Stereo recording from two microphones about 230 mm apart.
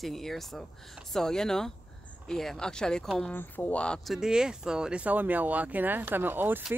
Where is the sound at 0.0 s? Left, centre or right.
Centre.